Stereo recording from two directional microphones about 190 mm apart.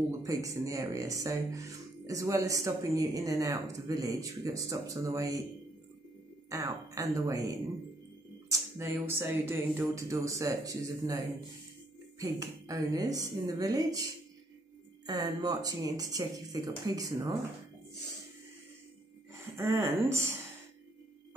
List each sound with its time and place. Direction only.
0.2 s speech: 15° right (ahead or behind)
6.5 s speech: 15° right (ahead or behind)
8.5 s speech: 15° right (ahead or behind)
12.2 s speech: 20° right (ahead or behind)
15.0 s speech: 20° right (ahead or behind)
19.3 s speech: 15° right (ahead or behind)